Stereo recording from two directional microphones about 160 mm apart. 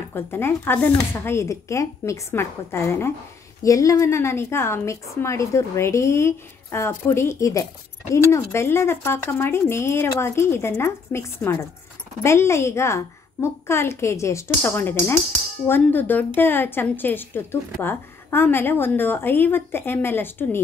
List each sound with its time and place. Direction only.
0.1 s a woman's voice: 15° left (ahead or behind)